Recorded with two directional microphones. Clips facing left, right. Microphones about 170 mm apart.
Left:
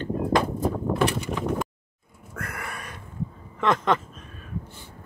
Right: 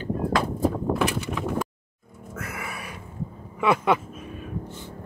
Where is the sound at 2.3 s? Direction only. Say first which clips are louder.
Right 1 dB; 5° right (ahead or behind).